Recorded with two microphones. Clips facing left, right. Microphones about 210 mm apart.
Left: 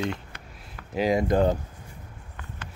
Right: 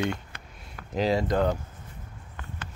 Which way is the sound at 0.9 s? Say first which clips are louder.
Left 2 dB; 10° left (ahead or behind).